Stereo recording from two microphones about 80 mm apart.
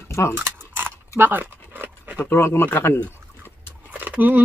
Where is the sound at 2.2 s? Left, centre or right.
Left.